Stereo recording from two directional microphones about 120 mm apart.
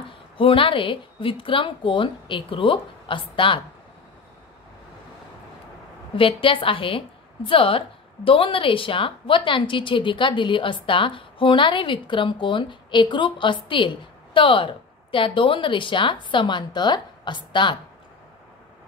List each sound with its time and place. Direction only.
0.4 s a woman's voice: 50° left (ahead or behind)
6.1 s a woman's voice: 45° left (ahead or behind)